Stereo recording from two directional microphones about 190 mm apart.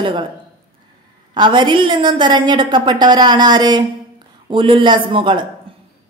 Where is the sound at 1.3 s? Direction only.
25° right (ahead or behind).